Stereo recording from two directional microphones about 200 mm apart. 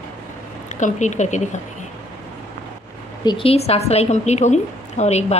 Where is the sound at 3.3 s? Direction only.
25° left (ahead or behind).